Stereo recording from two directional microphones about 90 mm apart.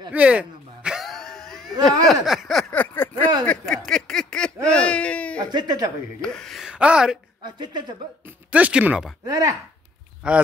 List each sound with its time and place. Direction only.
0.1 s a sound: 15° right (ahead or behind)
1.0 s a sound: 5° left (ahead or behind)
2.7 s a sound: 20° left (ahead or behind)
3.4 s a sound: 5° left (ahead or behind)
4.6 s baby cry: 10° left (ahead or behind)
5.5 s speech: 55° right (ahead or behind)
6.2 s speech: 5° left (ahead or behind)
6.6 s speech: 10° right (ahead or behind)
7.4 s speech: 55° right (ahead or behind)
8.3 s speech: 15° right (ahead or behind)
9.2 s speech: 40° right (ahead or behind)
10.2 s speech: 10° right (ahead or behind)